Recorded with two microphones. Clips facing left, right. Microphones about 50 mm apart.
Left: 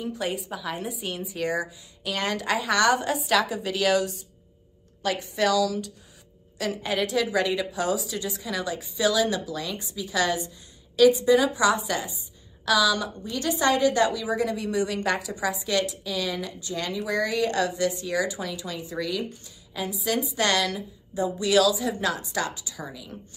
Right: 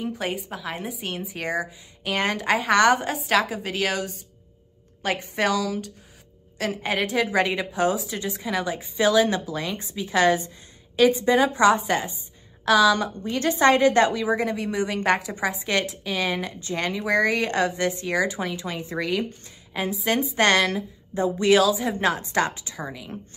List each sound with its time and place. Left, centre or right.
0.0 s a woman's voice: right
0.5 s a woman's voice: centre
0.8 s a woman's voice: right
3.3 s a woman's voice: centre; by 22.8 s right